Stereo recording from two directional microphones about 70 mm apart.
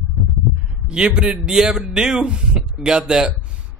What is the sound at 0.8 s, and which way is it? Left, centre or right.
A man's voice, centre.